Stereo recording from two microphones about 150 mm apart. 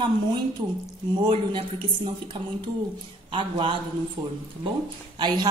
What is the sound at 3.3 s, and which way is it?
Speech, 35° right (ahead or behind).